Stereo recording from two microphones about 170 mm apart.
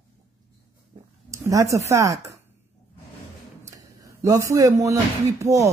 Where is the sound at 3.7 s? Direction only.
20° right (ahead or behind).